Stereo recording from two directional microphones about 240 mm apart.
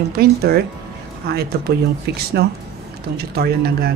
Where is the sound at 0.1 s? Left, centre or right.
Right.